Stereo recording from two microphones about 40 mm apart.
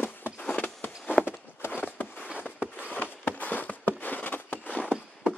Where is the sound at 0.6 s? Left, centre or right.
Left.